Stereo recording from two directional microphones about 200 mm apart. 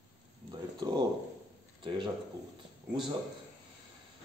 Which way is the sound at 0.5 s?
20° right (ahead or behind).